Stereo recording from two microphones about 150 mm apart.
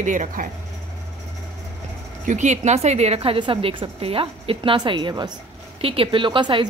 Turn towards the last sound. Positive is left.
turn(degrees=-35)  # may be behind; listen again after turning